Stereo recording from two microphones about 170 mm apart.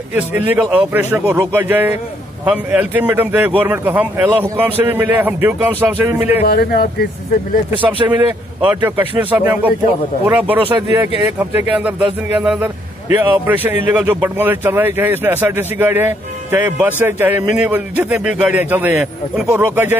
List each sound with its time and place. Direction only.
0.5 s speech: 10° right (ahead or behind)
6.4 s speech: 65° left (ahead or behind)
8.0 s a man's voice: 20° right (ahead or behind)